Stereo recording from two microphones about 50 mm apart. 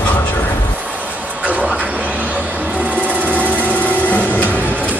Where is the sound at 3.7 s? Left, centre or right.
Left.